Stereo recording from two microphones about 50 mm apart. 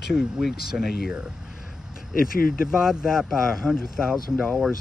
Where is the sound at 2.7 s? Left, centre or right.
Centre.